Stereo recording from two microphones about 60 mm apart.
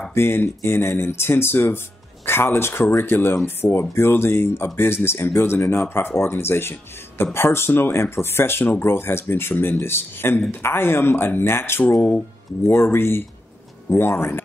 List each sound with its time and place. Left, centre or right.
0.1 s speech: left